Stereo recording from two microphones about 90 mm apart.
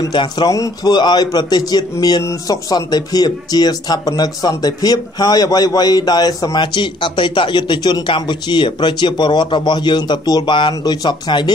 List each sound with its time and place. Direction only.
0.1 s speech: 60° left (ahead or behind)
0.5 s speech: 45° left (ahead or behind)